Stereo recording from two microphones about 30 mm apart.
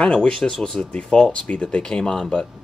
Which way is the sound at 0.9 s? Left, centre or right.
Left.